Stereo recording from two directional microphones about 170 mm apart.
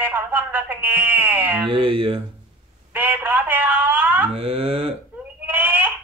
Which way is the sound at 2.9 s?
10° right (ahead or behind).